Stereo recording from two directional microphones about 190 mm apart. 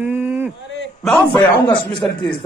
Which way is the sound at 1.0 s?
5° left (ahead or behind).